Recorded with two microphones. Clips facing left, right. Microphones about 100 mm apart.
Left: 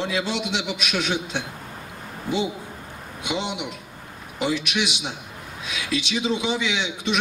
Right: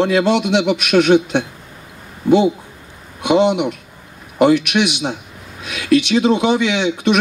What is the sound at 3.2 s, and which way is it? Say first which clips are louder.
Speech: right 14 dB; 60° right (ahead or behind).